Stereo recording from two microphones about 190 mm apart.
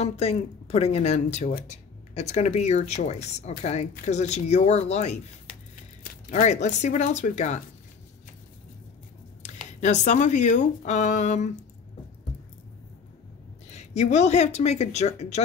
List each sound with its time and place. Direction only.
0.0 s speech: 35° left (ahead or behind)
6.2 s speech: 40° left (ahead or behind)
9.4 s speech: 40° left (ahead or behind)
13.7 s a sound: 35° left (ahead or behind)
14.1 s speech: 35° left (ahead or behind)